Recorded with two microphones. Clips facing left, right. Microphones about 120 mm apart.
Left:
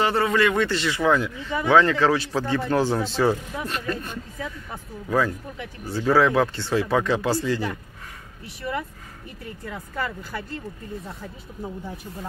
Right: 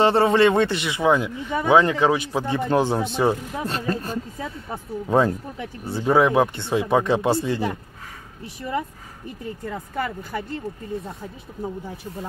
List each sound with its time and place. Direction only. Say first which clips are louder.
0.0 s speech: right 5 dB; 25° right (ahead or behind)
3.6 s speech: right 4 dB; 30° right (ahead or behind)
9.7 s speech: right 2 dB; 25° right (ahead or behind)